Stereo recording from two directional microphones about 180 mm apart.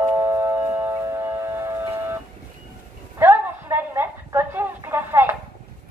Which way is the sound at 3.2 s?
10° right (ahead or behind).